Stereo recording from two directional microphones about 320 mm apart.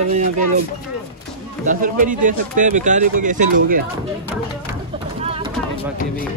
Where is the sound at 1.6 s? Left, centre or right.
Right.